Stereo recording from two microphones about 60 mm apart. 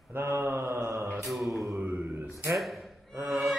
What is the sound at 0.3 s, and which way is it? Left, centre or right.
Mantra, right.